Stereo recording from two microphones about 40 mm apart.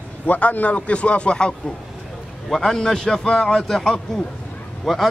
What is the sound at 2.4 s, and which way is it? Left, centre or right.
A man's voice, centre.